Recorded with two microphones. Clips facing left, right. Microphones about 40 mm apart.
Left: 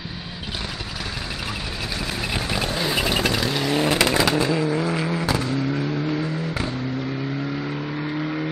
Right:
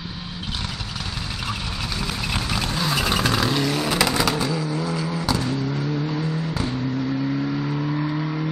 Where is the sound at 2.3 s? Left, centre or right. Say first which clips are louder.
Left 1 dB; centre.